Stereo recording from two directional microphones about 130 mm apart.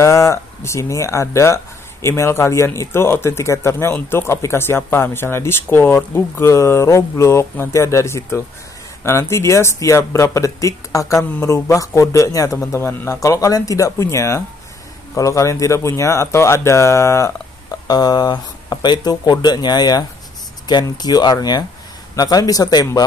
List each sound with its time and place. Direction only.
0.0 s speech: 20° left (ahead or behind)